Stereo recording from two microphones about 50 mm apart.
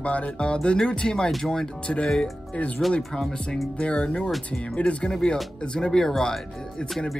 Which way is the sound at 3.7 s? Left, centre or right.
Left.